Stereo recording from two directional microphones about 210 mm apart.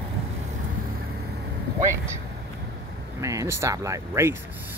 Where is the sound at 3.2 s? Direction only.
15° right (ahead or behind).